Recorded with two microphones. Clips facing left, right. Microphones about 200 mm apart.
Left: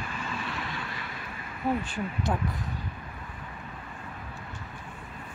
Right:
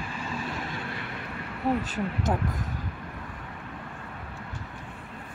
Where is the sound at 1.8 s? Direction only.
40° right (ahead or behind).